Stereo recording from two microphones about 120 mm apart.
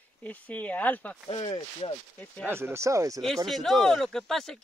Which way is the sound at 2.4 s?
20° right (ahead or behind).